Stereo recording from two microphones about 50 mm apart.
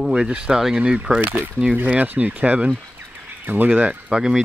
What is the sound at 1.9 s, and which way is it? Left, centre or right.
Speech, right.